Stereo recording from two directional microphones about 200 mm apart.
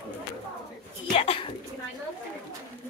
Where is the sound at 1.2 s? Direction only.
30° left (ahead or behind).